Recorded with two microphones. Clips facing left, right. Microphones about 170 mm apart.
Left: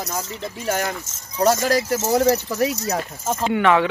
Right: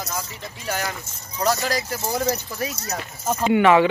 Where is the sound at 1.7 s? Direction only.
40° left (ahead or behind).